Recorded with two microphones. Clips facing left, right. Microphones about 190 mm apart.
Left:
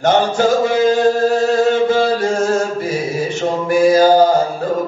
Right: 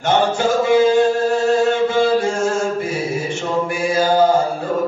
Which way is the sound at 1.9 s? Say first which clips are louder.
Left 1 dB; 40° left (ahead or behind).